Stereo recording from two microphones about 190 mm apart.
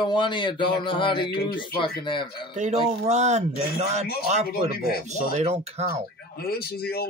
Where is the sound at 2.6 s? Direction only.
35° right (ahead or behind).